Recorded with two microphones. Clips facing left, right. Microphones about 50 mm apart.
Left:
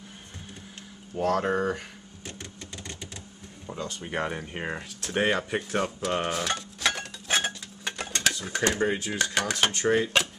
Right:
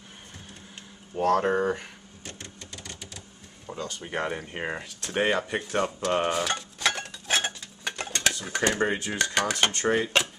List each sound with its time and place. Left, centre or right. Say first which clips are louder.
1.1 s speech: right 2 dB; centre
1.4 s speech: right 2 dB; centre
2.2 s printer: left 1 dB; centre
2.8 s typewriter: left 2 dB; left
3.7 s a sound: even; centre
4.0 s speech: even; centre
6.1 s dishes: right 3 dB; centre
8.8 s speech: even; centre